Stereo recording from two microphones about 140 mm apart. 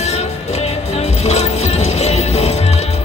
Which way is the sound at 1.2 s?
50° left (ahead or behind).